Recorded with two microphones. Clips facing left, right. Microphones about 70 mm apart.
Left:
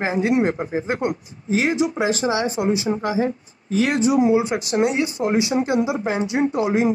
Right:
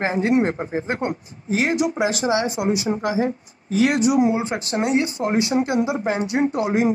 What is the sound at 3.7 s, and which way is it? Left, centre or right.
Speech, left.